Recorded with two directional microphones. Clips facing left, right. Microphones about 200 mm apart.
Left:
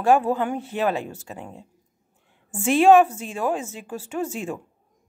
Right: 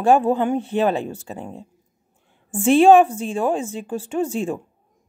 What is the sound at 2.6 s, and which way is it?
Speech, 30° right (ahead or behind).